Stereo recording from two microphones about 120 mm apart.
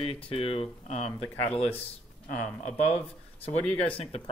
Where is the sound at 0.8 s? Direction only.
65° left (ahead or behind).